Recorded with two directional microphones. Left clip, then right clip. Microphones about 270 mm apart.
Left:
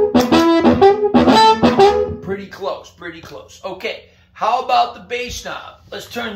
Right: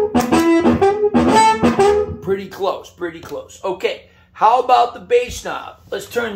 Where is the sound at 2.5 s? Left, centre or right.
Right.